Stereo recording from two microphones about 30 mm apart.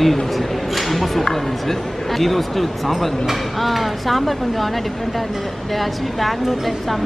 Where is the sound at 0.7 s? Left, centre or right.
Centre.